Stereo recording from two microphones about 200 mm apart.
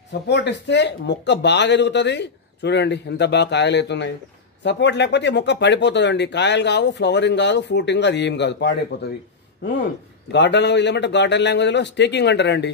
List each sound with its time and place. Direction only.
0.3 s speech: 60° left (ahead or behind)
10.3 s speech: 60° left (ahead or behind)